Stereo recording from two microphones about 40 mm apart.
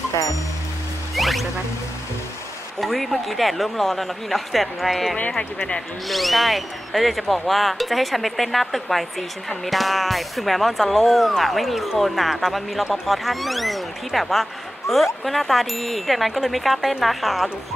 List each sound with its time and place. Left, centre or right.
1.1 s music: centre
2.8 s speech: centre